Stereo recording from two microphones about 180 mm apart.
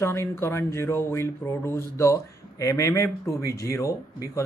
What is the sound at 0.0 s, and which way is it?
Speech, 15° left (ahead or behind).